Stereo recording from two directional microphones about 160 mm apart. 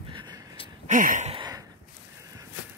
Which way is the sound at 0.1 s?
25° right (ahead or behind).